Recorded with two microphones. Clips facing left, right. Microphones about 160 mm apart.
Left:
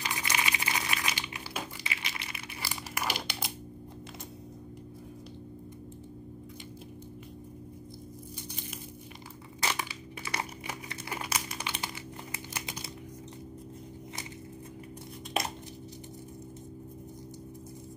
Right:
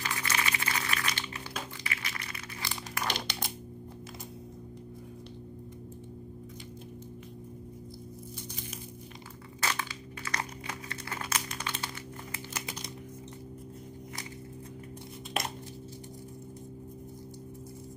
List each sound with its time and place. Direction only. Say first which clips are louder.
0.0 s a sound: even; 15° left (ahead or behind)
2.6 s crumpling: even; 5° left (ahead or behind)
9.6 s crumpling: even; 15° left (ahead or behind)